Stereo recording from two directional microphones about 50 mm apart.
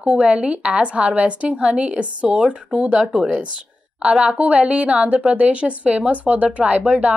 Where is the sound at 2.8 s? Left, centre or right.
Centre.